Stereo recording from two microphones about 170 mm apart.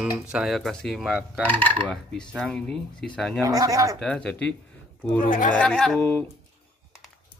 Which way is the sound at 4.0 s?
5° left (ahead or behind).